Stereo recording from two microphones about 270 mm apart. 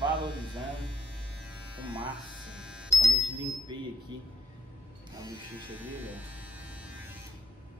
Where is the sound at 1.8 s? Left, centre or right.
Centre.